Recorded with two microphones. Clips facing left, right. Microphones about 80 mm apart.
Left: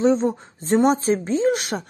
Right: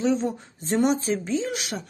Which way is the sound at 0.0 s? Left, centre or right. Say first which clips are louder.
Left 5 dB; left.